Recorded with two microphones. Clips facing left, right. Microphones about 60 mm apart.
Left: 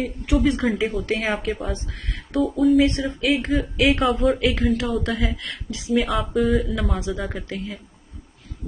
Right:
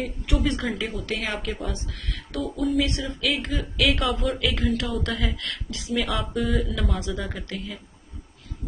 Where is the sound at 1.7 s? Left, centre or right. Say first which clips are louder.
Left 3 dB; left.